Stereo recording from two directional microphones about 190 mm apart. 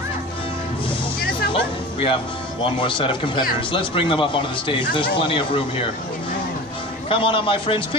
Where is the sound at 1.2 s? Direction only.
50° left (ahead or behind).